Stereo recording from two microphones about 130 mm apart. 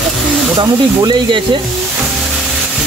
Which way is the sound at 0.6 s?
40° right (ahead or behind).